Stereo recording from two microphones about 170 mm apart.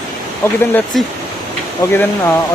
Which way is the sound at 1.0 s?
Centre (ahead or behind).